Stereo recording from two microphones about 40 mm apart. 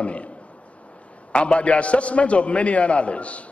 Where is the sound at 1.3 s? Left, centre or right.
Left.